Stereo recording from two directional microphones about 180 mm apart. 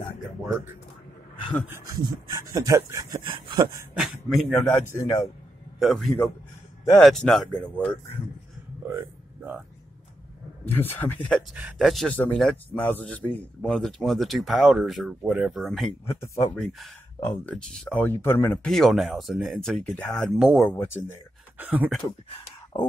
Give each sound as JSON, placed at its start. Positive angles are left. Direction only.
{"t": 2.0, "sound": "speech", "side_deg": -20}
{"t": 4.0, "sound": "speech", "side_deg": 0}
{"t": 4.8, "sound": "speech", "side_deg": 15}
{"t": 5.8, "sound": "a man's voice", "side_deg": 0}
{"t": 10.8, "sound": "speech", "side_deg": 10}
{"t": 16.1, "sound": "speech", "side_deg": 15}
{"t": 16.5, "sound": "speech", "side_deg": 0}
{"t": 20.7, "sound": "speech", "side_deg": 15}
{"t": 21.5, "sound": "speech", "side_deg": -10}
{"t": 22.0, "sound": "speech", "side_deg": 20}